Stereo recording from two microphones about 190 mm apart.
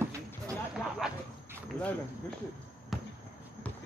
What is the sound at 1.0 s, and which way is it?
Speech, 5° right (ahead or behind).